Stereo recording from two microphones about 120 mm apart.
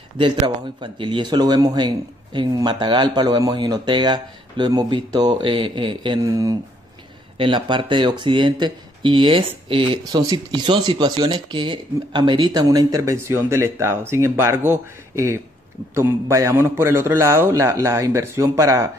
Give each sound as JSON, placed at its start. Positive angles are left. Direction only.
{"t": 0.7, "sound": "speech", "side_deg": -45}
{"t": 6.2, "sound": "speech", "side_deg": -30}
{"t": 7.3, "sound": "a man's voice", "side_deg": -45}